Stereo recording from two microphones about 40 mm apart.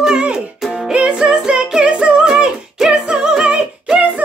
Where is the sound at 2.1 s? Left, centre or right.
Centre.